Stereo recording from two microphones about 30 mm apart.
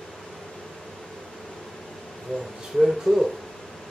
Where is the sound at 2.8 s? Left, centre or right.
Centre.